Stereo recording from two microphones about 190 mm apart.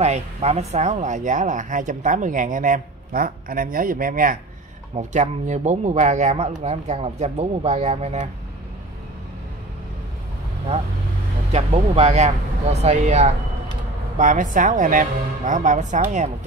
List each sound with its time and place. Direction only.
0.0 s speech: 35° right (ahead or behind)
11.5 s speech: 35° right (ahead or behind)